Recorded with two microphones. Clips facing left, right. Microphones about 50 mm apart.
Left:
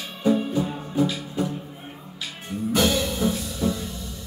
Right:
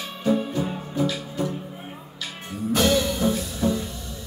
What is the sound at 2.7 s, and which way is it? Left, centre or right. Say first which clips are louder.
Music: right 2 dB; centre.